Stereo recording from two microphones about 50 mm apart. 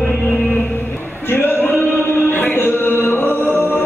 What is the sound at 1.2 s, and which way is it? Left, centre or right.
Music, left.